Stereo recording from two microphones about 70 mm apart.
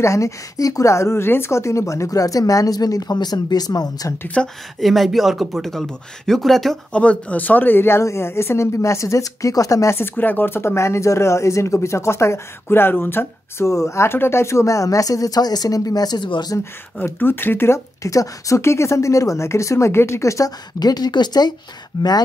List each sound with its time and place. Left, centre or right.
0.0 s a woman's voice: left
4.4 s speech: centre
4.7 s speech: centre
6.9 s speech: centre; by 9.9 s left
9.9 s speech: left
13.7 s a woman's voice: left
16.5 s speech: left
20.8 s speech: left